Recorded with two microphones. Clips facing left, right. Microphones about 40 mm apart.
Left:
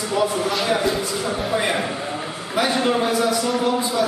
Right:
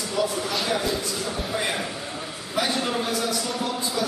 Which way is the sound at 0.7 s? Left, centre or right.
Left.